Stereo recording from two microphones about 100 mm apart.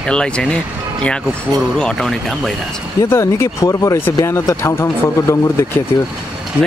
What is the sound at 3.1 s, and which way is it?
Speech, 25° left (ahead or behind).